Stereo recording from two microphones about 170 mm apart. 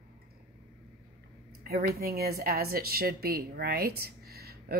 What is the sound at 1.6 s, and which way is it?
A woman's voice, 65° right (ahead or behind).